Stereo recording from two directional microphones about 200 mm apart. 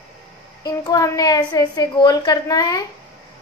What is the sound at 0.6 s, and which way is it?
A woman's voice, 15° left (ahead or behind).